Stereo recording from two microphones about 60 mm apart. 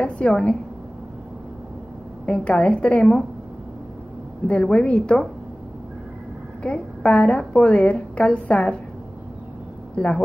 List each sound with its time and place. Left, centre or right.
0.0 s a woman's voice: centre
2.3 s a woman's voice: left
4.5 s a woman's voice: left
6.6 s a woman's voice: centre
9.9 s a woman's voice: centre